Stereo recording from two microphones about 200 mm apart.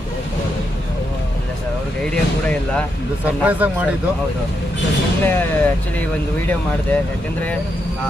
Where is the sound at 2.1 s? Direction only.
5° left (ahead or behind).